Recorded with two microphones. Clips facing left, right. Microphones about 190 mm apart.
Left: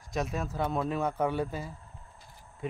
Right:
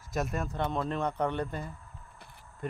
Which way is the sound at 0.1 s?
Centre (ahead or behind).